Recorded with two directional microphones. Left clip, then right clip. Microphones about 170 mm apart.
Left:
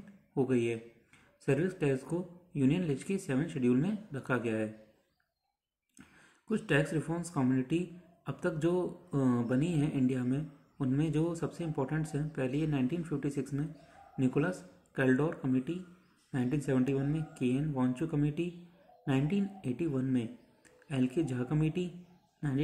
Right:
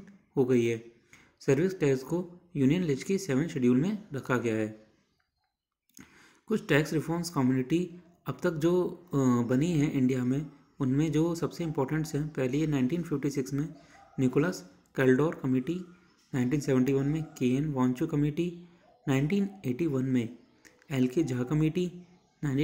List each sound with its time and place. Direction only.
0.3 s speech: 15° right (ahead or behind)
6.5 s speech: 15° right (ahead or behind)